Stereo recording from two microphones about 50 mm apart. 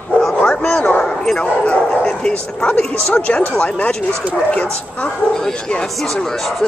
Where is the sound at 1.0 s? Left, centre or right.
Centre.